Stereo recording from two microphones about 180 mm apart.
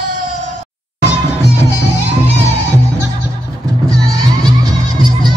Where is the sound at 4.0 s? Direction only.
20° right (ahead or behind).